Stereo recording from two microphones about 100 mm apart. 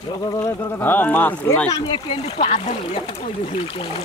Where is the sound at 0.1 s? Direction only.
40° left (ahead or behind).